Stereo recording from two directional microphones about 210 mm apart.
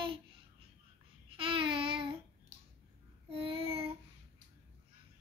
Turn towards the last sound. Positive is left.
turn(degrees=-25)  # may be behind; listen again after turning